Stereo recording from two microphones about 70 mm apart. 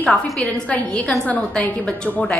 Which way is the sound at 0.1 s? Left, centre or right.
Centre.